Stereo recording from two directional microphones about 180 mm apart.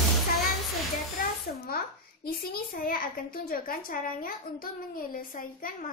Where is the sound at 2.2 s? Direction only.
55° left (ahead or behind).